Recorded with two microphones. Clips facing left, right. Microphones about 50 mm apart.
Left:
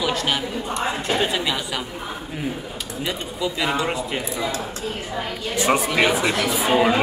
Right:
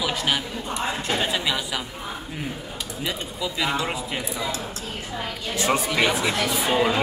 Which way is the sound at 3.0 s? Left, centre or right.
Centre.